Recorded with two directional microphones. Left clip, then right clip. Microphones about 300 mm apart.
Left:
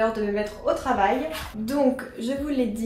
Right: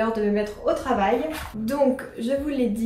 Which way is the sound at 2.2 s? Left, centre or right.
Centre.